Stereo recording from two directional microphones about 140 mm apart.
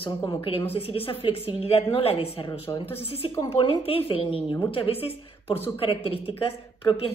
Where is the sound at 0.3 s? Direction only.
40° left (ahead or behind).